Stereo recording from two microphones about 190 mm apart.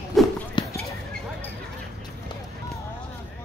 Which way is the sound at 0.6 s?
25° left (ahead or behind).